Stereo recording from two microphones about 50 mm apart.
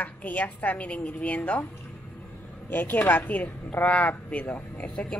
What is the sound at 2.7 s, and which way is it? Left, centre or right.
A woman's voice, left.